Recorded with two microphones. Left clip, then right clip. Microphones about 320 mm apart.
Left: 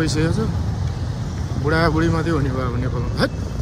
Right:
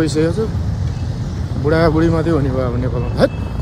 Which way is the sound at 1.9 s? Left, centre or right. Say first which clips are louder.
Right 5 dB; right.